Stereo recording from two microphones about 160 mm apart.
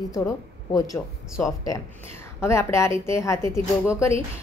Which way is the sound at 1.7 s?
15° left (ahead or behind).